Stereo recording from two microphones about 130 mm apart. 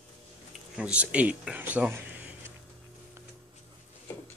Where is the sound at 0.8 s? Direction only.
10° right (ahead or behind).